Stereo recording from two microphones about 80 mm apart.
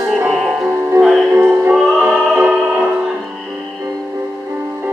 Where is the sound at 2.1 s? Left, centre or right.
Right.